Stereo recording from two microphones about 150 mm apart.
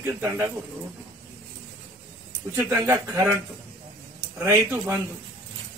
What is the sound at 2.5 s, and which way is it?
Speech, 15° right (ahead or behind).